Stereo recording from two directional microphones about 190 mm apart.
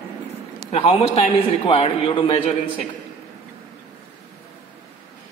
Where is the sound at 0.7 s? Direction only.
30° left (ahead or behind).